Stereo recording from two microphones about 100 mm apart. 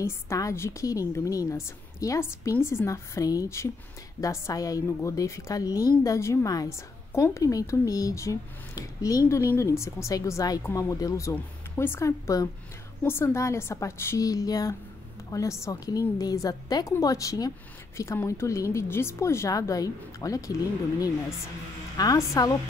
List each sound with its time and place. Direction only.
0.0 s a woman's voice: 30° left (ahead or behind)
11.3 s a woman's voice: 20° left (ahead or behind)
21.9 s a woman's voice: 35° left (ahead or behind)